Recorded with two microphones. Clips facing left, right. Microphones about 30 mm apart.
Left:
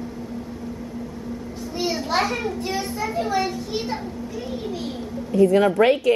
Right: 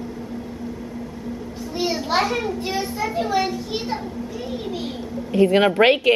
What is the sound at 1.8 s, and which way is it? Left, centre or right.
Children playing, centre.